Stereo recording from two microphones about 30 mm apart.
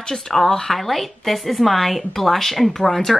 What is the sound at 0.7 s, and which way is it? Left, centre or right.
Speech, centre.